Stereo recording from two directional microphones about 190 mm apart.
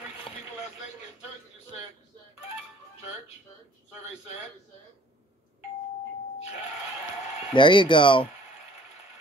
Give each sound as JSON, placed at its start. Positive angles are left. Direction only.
{"t": 7.5, "sound": "speech", "side_deg": 25}